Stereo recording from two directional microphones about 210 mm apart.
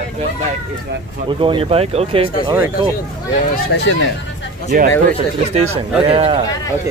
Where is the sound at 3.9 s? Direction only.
60° left (ahead or behind).